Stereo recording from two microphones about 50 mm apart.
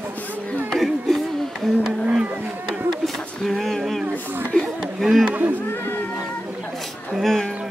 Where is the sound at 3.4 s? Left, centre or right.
Centre.